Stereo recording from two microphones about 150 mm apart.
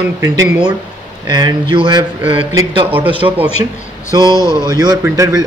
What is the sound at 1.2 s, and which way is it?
Mantra, 30° right (ahead or behind).